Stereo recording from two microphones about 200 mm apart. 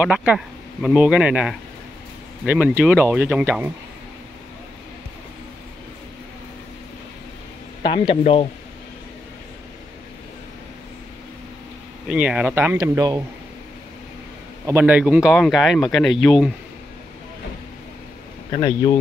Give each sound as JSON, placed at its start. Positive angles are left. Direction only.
{"t": 0.0, "sound": "speech", "side_deg": -5}
{"t": 7.8, "sound": "speech", "side_deg": 25}
{"t": 12.1, "sound": "speech", "side_deg": -5}
{"t": 14.7, "sound": "speech", "side_deg": -10}
{"t": 18.5, "sound": "speech", "side_deg": 20}